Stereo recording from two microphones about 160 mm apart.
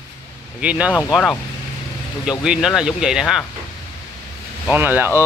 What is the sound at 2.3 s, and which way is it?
Speech, 5° right (ahead or behind).